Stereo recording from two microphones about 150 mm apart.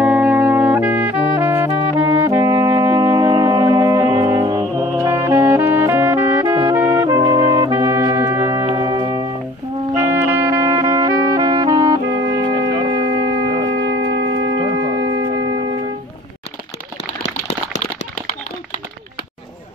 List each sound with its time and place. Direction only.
0.0 s music: 10° right (ahead or behind); by 7.7 s 25° right (ahead or behind)
7.7 s brass instrument: 20° right (ahead or behind)
8.6 s music: 20° right (ahead or behind)